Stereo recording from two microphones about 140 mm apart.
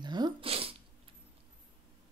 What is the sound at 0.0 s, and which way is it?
Sneeze, 30° right (ahead or behind).